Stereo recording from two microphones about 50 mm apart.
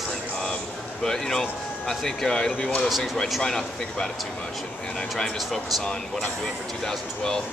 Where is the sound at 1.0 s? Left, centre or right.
Centre.